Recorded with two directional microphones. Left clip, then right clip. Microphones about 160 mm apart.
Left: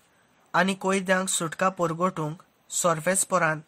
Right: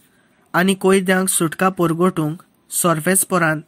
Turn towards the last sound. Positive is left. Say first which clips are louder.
# right 6 dB
turn(degrees=-20)  # may be behind; listen again after turning